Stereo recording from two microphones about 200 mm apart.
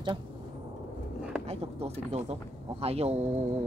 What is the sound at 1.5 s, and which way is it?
Speech, 30° right (ahead or behind).